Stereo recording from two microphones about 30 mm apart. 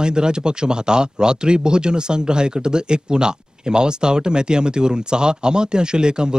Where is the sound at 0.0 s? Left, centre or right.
Right.